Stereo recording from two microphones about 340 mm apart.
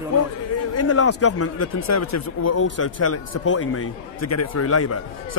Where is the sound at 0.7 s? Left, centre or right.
Left.